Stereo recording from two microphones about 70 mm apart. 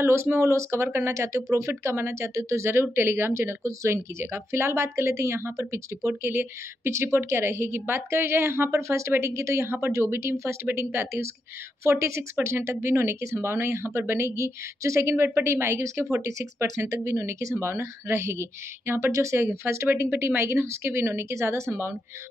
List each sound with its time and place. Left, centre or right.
0.0 s speech: right
19.9 s speech: right